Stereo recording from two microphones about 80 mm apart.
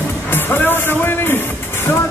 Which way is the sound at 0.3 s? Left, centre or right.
Left.